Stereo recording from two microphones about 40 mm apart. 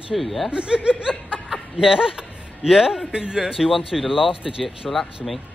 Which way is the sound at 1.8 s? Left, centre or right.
Centre.